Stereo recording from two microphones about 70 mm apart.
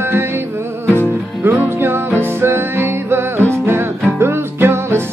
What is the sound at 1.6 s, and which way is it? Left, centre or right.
Music, right.